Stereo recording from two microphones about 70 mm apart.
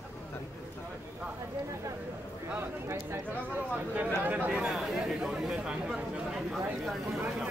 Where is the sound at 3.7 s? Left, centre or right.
Right.